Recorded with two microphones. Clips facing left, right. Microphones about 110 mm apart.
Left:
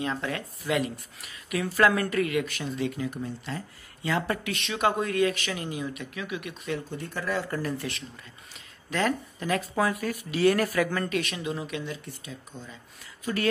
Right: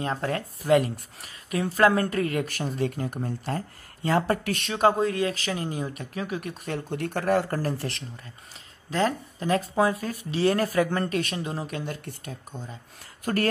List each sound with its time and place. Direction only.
0.0 s speech: 40° right (ahead or behind)
6.9 s speech: 60° right (ahead or behind); by 7.9 s 35° right (ahead or behind)
8.9 s speech: 30° right (ahead or behind); by 13.5 s 50° right (ahead or behind)